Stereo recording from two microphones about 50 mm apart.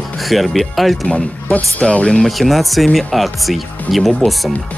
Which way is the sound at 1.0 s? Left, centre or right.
Left.